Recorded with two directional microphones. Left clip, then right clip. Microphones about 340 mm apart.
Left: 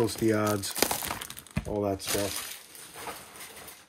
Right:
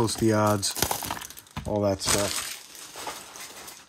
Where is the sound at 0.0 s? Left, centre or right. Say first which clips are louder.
Right 3 dB; centre.